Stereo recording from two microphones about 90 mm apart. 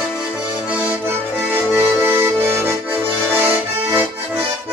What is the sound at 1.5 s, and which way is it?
Accordion, 20° right (ahead or behind).